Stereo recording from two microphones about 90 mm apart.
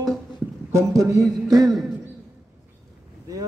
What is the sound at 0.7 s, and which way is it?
A man's voice, 35° right (ahead or behind).